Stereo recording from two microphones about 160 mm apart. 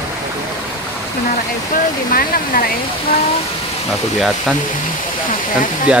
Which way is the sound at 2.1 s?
65° left (ahead or behind).